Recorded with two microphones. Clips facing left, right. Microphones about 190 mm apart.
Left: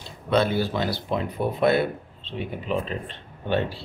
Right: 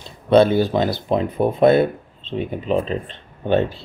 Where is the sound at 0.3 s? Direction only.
25° right (ahead or behind).